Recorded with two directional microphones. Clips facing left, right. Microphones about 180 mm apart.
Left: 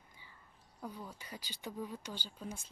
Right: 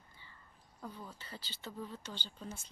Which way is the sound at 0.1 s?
10° left (ahead or behind).